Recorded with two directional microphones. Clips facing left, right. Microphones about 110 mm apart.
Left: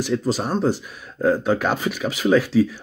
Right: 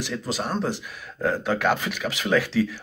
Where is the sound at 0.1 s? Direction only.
10° left (ahead or behind).